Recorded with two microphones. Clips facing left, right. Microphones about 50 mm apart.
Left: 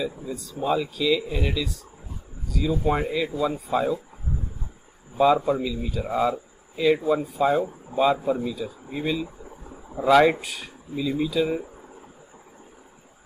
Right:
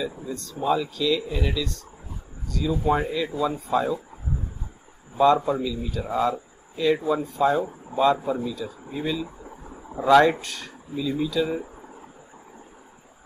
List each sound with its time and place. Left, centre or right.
0.0 s speech: centre
5.1 s speech: centre
5.9 s speech: centre